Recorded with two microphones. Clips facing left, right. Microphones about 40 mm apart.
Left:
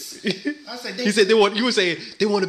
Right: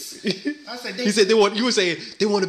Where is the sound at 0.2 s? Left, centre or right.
Centre.